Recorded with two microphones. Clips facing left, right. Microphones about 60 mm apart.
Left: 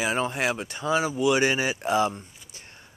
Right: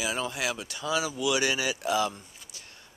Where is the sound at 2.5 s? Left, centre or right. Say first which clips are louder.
Left 2 dB; left.